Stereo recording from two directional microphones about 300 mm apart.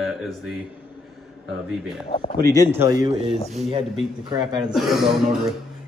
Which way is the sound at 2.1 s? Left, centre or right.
Left.